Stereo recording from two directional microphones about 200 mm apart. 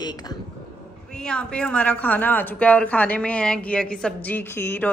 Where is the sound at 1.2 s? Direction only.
5° left (ahead or behind).